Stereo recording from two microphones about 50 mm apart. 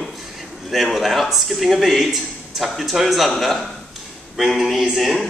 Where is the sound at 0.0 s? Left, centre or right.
Centre.